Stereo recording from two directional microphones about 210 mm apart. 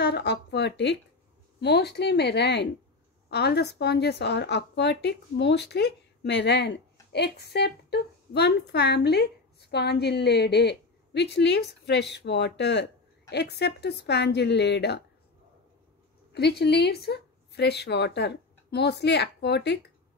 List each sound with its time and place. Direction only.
0.0 s speech: 55° left (ahead or behind)
16.3 s speech: 50° left (ahead or behind)